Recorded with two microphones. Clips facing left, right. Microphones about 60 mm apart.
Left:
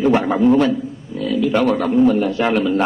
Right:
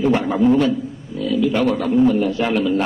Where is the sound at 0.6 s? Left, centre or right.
Left.